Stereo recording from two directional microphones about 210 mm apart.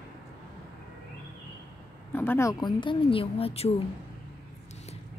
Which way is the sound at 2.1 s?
10° left (ahead or behind).